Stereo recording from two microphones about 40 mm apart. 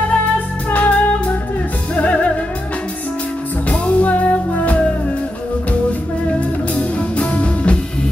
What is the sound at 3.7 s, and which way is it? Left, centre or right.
Music, left.